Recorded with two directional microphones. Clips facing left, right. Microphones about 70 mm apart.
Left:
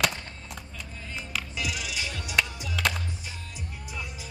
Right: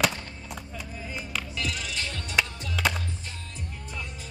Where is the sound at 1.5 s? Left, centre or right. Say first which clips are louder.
Even; centre.